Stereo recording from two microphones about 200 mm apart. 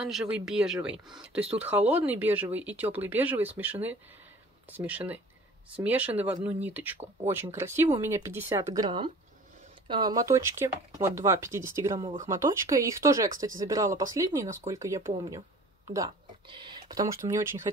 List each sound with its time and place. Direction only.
0.0 s speech: 5° right (ahead or behind)